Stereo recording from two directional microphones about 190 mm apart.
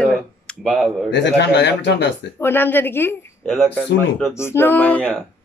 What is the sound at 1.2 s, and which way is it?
Speech, 65° left (ahead or behind).